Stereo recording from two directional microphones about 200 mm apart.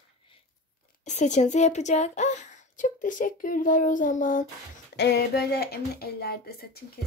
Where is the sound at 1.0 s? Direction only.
35° left (ahead or behind).